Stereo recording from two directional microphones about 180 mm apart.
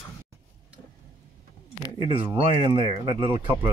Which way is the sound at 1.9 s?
30° right (ahead or behind).